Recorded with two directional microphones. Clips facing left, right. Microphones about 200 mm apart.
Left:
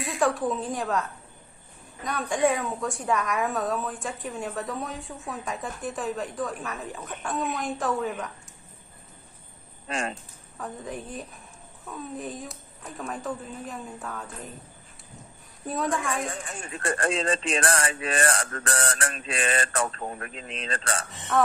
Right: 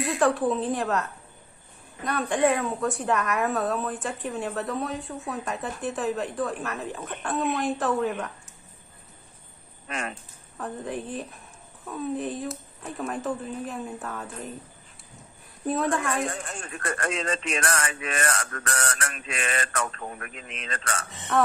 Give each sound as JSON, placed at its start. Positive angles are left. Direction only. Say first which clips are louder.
{"t": 0.0, "sound": "a woman's voice", "louder": "right 2 dB", "side_deg": 0}
{"t": 2.0, "sound": "a woman's voice", "louder": "right 1 dB", "side_deg": 0}
{"t": 9.8, "sound": "speech", "louder": "left 2 dB", "side_deg": 30}
{"t": 10.6, "sound": "a woman's voice", "louder": "right 3 dB", "side_deg": 0}
{"t": 15.6, "sound": "a woman's voice", "louder": "right 3 dB", "side_deg": -5}
{"t": 16.7, "sound": "speech", "louder": "left 3 dB", "side_deg": 30}